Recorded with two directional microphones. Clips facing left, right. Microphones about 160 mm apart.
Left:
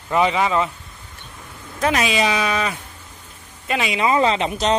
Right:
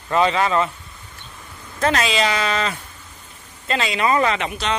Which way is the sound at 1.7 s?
10° left (ahead or behind).